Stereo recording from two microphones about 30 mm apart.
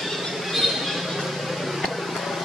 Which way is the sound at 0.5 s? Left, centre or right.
Centre.